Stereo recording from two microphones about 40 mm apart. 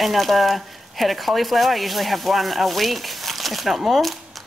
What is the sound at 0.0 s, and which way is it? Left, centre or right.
Speech, centre.